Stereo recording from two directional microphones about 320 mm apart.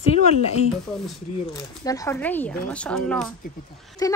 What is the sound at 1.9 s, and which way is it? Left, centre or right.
A woman's voice, centre.